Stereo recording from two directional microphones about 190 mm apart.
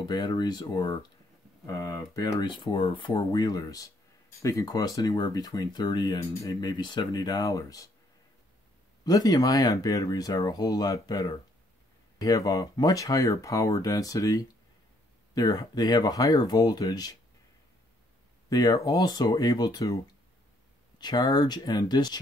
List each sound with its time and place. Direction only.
0.1 s speech: 20° left (ahead or behind)
9.0 s speech: 20° left (ahead or behind)
18.5 s speech: 20° left (ahead or behind)
21.0 s speech: 20° left (ahead or behind)